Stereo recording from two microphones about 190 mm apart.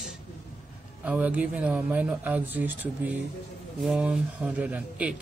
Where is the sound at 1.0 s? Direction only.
5° right (ahead or behind).